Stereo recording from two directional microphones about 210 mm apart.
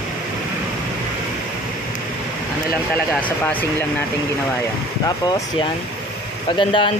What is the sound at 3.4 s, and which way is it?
Speech, 10° left (ahead or behind).